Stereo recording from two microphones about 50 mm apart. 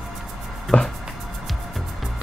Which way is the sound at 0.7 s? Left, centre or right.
Left.